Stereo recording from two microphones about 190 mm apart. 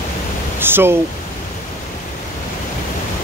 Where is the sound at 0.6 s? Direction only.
10° right (ahead or behind).